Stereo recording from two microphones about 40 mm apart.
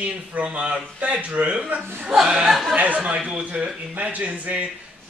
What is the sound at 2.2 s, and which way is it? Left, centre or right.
Speech, centre.